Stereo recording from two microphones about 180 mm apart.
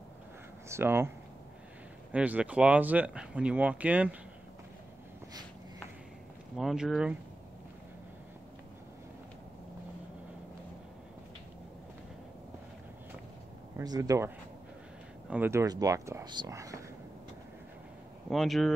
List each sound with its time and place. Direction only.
0.7 s speech: 15° right (ahead or behind)
2.1 s speech: 5° right (ahead or behind)
6.5 s speech: centre (ahead or behind)
13.7 s speech: 20° right (ahead or behind)
18.3 s speech: centre (ahead or behind)